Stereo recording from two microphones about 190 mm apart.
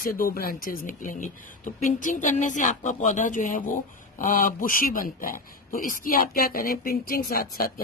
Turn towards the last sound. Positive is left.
turn(degrees=50)  # may be behind; listen again after turning